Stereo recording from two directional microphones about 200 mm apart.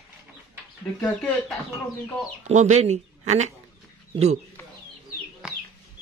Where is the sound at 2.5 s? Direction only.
35° right (ahead or behind).